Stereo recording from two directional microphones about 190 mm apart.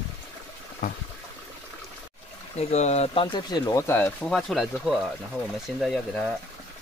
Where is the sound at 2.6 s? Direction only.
35° left (ahead or behind).